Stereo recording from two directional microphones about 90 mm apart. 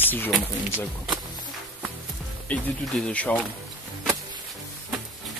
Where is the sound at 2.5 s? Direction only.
15° left (ahead or behind).